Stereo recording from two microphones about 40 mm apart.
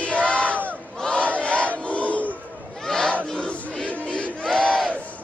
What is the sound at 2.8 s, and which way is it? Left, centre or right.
Battle cry, centre.